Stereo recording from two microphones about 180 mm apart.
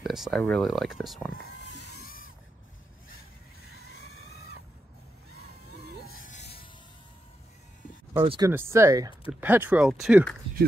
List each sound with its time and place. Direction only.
0.0 s a sound: centre (ahead or behind)
0.4 s speech: 5° left (ahead or behind)
8.2 s speech: 25° right (ahead or behind)
8.5 s speech: 15° right (ahead or behind)